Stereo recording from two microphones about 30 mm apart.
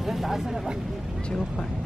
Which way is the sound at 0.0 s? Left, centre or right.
Centre.